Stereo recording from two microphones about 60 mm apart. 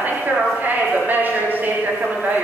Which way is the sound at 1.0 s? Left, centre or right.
Right.